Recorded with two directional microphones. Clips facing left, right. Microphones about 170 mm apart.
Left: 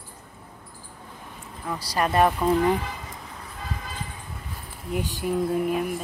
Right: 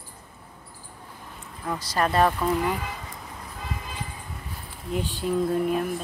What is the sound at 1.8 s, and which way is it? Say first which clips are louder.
Speech: left 1 dB; 10° left (ahead or behind).